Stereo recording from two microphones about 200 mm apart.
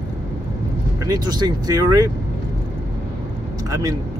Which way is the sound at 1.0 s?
20° right (ahead or behind).